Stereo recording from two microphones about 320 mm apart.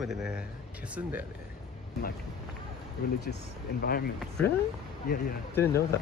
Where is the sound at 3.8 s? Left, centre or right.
Left.